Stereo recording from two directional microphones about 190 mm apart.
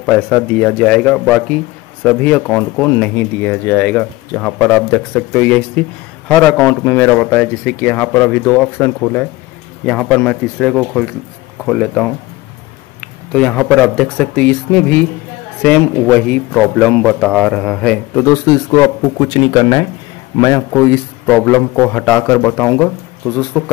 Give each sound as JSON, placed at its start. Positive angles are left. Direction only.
{"t": 0.0, "sound": "a man's voice", "side_deg": 10}
{"t": 13.3, "sound": "a man's voice", "side_deg": 5}